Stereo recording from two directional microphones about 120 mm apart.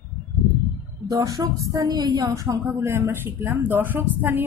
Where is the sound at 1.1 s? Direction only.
30° right (ahead or behind).